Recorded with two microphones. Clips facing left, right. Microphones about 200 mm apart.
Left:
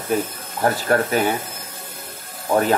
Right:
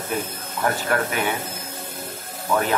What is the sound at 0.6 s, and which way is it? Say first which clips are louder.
Speech: left 4 dB; 45° left (ahead or behind).